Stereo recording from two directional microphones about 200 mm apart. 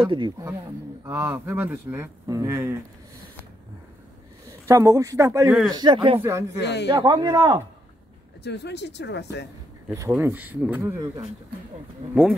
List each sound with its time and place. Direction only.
0.0 s speech: 25° right (ahead or behind)
1.0 s speech: 10° right (ahead or behind)
4.5 s a man's voice: 15° right (ahead or behind)
6.2 s speech: 15° right (ahead or behind)
6.6 s speech: 60° left (ahead or behind)
6.9 s speech: 20° right (ahead or behind)
8.5 s speech: 55° left (ahead or behind)
9.8 s speech: 10° right (ahead or behind)